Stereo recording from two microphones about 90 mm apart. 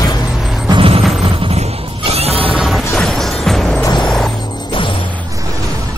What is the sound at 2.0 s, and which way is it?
Music, 90° right.